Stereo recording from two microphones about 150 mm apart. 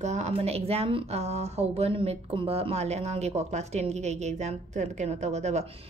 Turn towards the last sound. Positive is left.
turn(degrees=-50)  # may be behind; listen again after turning